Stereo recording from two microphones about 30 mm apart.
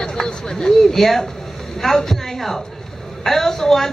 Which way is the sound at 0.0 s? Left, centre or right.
Left.